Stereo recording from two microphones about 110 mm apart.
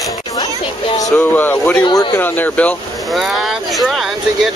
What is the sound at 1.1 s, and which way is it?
Speech, 15° left (ahead or behind).